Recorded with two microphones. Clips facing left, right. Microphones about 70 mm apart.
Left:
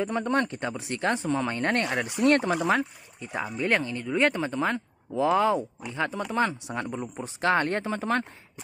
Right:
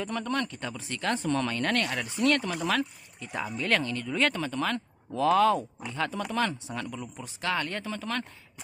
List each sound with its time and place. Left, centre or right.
0.0 s speech: left